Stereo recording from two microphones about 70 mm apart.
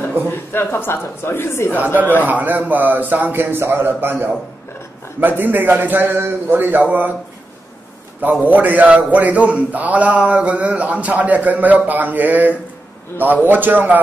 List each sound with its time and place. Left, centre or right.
0.3 s a man's voice: left
2.2 s a man's voice: right
8.2 s a man's voice: right